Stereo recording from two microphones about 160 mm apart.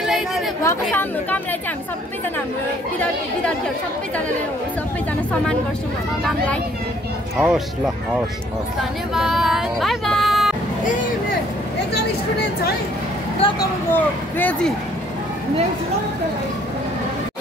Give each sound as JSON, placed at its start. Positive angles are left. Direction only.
{"t": 0.0, "sound": "chatter", "side_deg": 0}
{"t": 0.7, "sound": "speech", "side_deg": 10}
{"t": 3.0, "sound": "speech", "side_deg": 5}
{"t": 6.2, "sound": "speech", "side_deg": 5}
{"t": 7.3, "sound": "speech", "side_deg": -5}
{"t": 9.1, "sound": "speech", "side_deg": 0}
{"t": 13.4, "sound": "speech", "side_deg": 35}
{"t": 13.9, "sound": "speech", "side_deg": 10}